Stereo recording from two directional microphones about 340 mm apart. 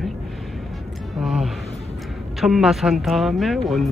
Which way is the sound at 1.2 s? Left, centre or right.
Centre.